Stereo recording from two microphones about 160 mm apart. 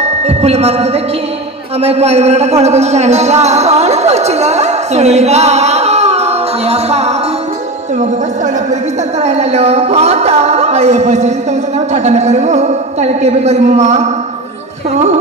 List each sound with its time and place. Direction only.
0.3 s speech: 40° right (ahead or behind)
9.2 s a woman's voice: 40° right (ahead or behind)